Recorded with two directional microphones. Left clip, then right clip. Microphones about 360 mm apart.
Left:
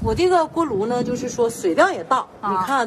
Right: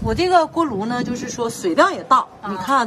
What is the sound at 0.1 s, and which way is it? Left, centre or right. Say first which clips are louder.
A man's voice: right 2 dB; right.